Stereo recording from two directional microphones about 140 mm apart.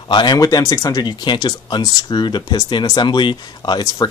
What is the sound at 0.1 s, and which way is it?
Speech, 30° left (ahead or behind).